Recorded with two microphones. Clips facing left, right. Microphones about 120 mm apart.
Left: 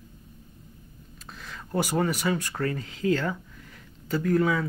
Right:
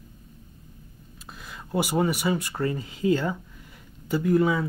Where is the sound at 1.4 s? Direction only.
10° right (ahead or behind).